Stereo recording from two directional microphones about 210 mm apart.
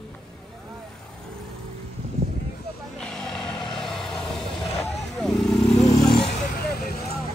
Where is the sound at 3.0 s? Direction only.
5° left (ahead or behind).